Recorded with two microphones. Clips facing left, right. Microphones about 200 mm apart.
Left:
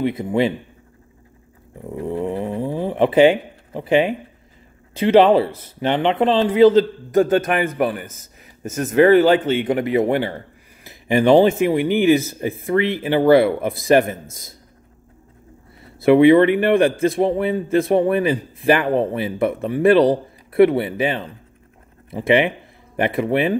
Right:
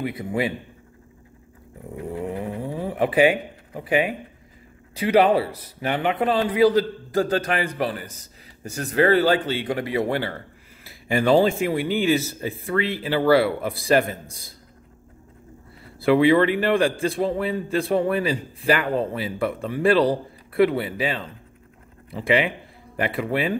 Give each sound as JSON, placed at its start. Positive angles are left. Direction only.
{"t": 0.0, "sound": "a man's voice", "side_deg": 25}
{"t": 2.1, "sound": "a sound", "side_deg": 30}
{"t": 4.9, "sound": "a man's voice", "side_deg": 25}
{"t": 16.0, "sound": "a man's voice", "side_deg": 20}